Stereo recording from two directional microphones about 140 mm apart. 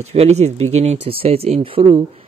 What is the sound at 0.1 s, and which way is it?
Speech, 50° right (ahead or behind).